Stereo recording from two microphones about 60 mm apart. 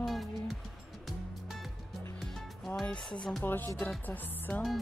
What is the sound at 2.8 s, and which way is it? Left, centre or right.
Speech, centre.